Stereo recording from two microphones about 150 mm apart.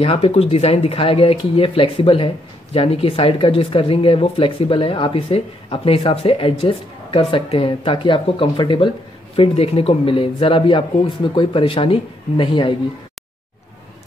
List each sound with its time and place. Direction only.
0.0 s speech: 40° left (ahead or behind)